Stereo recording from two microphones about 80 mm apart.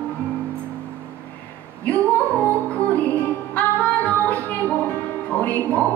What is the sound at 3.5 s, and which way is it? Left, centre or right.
Music, centre.